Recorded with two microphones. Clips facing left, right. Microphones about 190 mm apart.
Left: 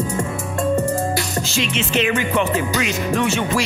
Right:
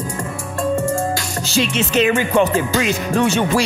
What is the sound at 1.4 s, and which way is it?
Music, 35° right (ahead or behind).